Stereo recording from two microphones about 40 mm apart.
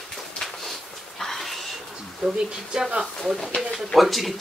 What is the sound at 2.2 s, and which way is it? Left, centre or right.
Speech, centre.